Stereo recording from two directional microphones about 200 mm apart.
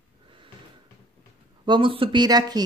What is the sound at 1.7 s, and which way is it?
Speech, 25° right (ahead or behind).